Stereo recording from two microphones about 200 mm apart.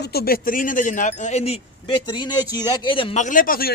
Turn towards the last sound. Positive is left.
turn(degrees=45)  # may be behind; listen again after turning